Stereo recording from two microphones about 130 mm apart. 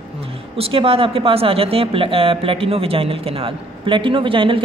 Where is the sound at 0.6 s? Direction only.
45° right (ahead or behind).